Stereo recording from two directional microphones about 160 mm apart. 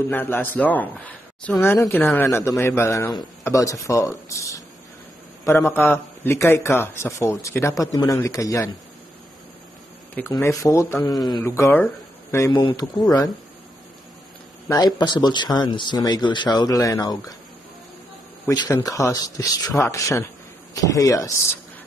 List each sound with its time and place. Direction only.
0.1 s a man's voice: 10° left (ahead or behind)
10.4 s a man's voice: 20° left (ahead or behind)
11.4 s speech: 15° left (ahead or behind)
14.7 s speech: 25° left (ahead or behind)
18.5 s speech: 25° left (ahead or behind)